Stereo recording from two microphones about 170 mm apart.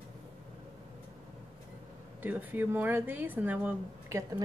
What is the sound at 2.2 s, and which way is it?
Speech, 10° right (ahead or behind).